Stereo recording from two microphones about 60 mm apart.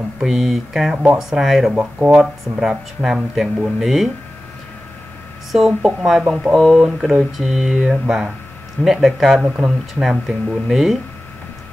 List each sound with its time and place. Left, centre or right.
0.2 s speech: centre
1.7 s speech: right
2.6 s speech: centre
5.7 s speech: centre